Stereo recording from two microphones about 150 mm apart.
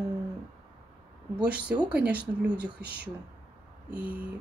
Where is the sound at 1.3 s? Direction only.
10° right (ahead or behind).